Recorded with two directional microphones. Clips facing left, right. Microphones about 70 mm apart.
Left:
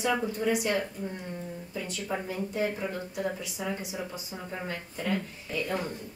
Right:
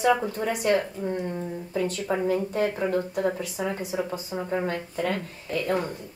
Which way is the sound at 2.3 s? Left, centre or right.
Right.